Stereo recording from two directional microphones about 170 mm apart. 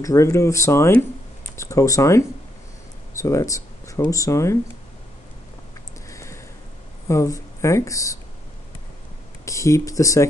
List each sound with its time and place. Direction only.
0.0 s speech: 20° left (ahead or behind)
6.0 s a sound: 15° left (ahead or behind)
7.1 s speech: 15° left (ahead or behind)
9.4 s speech: 20° left (ahead or behind)